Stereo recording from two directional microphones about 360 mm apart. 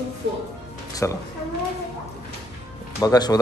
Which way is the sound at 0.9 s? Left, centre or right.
Centre.